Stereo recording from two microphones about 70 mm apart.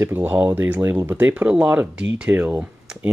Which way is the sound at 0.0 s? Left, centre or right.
Right.